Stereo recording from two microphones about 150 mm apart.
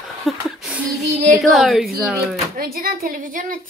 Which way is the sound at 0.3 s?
Centre (ahead or behind).